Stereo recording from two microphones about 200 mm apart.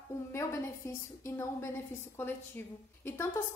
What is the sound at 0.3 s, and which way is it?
A woman's voice, 15° left (ahead or behind).